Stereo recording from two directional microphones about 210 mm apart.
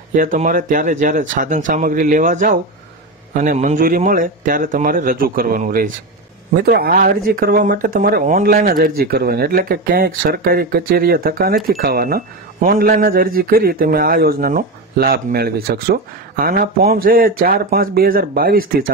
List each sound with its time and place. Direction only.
0.1 s speech: 40° right (ahead or behind)